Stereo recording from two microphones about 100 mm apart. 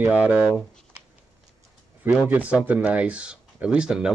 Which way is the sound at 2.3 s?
15° right (ahead or behind).